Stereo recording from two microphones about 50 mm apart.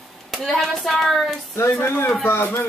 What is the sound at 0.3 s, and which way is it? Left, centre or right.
Speech, centre.